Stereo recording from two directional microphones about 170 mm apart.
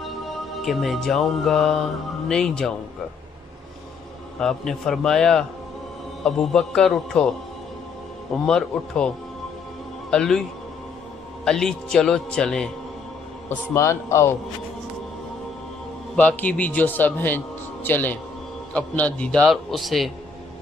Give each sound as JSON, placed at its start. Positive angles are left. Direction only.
{"t": 0.0, "sound": "music", "side_deg": 0}
{"t": 4.4, "sound": "a man's voice", "side_deg": 5}
{"t": 8.5, "sound": "a man's voice", "side_deg": 5}
{"t": 10.1, "sound": "a man's voice", "side_deg": 5}
{"t": 11.4, "sound": "a man's voice", "side_deg": 5}
{"t": 13.7, "sound": "a man's voice", "side_deg": 15}
{"t": 16.2, "sound": "a man's voice", "side_deg": 10}